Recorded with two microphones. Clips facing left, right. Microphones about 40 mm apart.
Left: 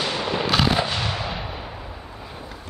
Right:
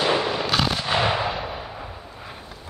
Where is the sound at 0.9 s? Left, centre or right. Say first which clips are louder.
Right 5 dB; right.